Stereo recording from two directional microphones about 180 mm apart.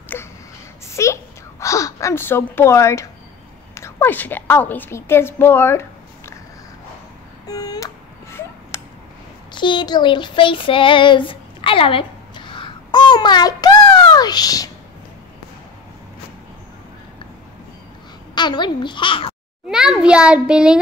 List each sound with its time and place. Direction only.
0.1 s a sound: 10° left (ahead or behind)
3.7 s a woman's voice: 15° left (ahead or behind)
7.4 s a sound: 20° left (ahead or behind)
9.5 s child singing: 25° left (ahead or behind)
18.3 s a child's voice: 25° left (ahead or behind)
19.7 s a child's voice: 5° right (ahead or behind)